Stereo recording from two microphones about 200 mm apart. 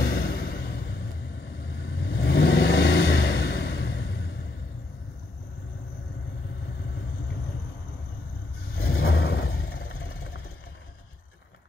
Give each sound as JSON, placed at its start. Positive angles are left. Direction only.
{"t": 0.0, "sound": "a sound", "side_deg": 50}
{"t": 1.9, "sound": "vehicle", "side_deg": 55}
{"t": 8.8, "sound": "vehicle", "side_deg": 75}